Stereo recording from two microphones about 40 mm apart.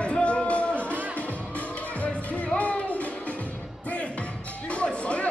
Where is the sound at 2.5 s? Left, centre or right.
Left.